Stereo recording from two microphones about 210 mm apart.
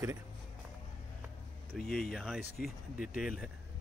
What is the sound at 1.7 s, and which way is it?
Speech, centre (ahead or behind).